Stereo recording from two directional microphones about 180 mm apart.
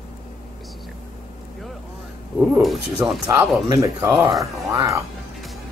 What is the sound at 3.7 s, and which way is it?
Speech, 15° right (ahead or behind).